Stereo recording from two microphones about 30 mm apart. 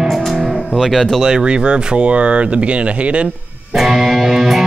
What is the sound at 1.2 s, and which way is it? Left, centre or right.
Speech, right.